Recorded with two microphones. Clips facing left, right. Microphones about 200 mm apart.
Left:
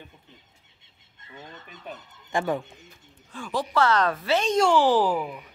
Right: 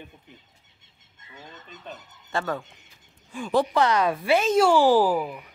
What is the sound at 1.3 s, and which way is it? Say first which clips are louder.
Fowl: left 1 dB; 10° left (ahead or behind).